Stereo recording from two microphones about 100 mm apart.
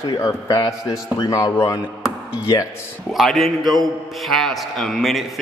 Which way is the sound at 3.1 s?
Centre (ahead or behind).